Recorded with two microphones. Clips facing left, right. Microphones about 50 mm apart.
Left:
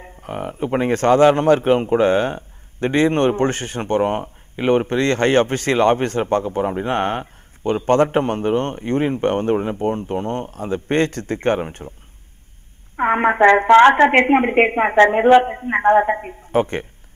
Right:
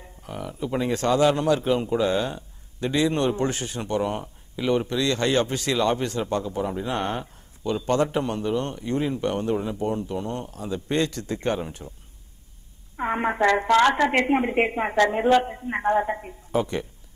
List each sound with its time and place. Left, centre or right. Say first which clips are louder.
0.0 s speech: left 7 dB; left
12.9 s speech: left 8 dB; left